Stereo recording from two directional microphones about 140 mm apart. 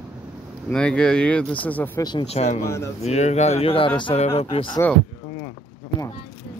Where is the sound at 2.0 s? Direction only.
30° left (ahead or behind).